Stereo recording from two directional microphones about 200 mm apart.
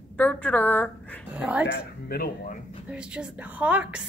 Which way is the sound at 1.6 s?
60° left (ahead or behind).